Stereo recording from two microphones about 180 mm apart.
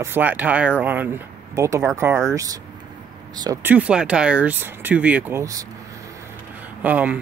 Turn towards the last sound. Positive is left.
turn(degrees=-10)  # may be behind; listen again after turning